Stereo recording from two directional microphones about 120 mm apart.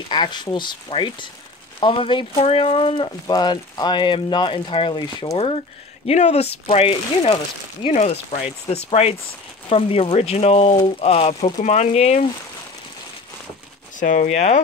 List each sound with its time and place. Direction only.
0.1 s speech: 40° left (ahead or behind)
2.3 s speech: 55° left (ahead or behind); by 5.4 s 35° left (ahead or behind)
6.0 s speech: 65° left (ahead or behind)
7.9 s speech: 75° left (ahead or behind)
8.6 s speech: 60° left (ahead or behind)
11.6 s speech: 75° left (ahead or behind)
13.9 s speech: 90° left; by 14.6 s 70° left (ahead or behind)